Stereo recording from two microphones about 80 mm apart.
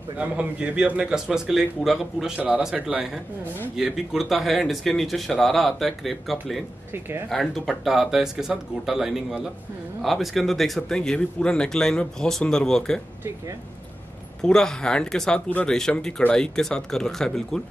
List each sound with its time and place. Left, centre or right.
0.2 s a man's voice: centre
6.9 s speech: right
7.2 s speech: centre
14.4 s speech: centre